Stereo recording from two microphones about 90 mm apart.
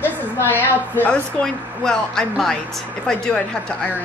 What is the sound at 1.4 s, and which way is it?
Speech, 5° left (ahead or behind).